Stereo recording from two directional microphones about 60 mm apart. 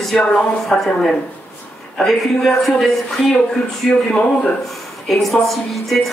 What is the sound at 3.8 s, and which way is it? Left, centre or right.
Speech, centre.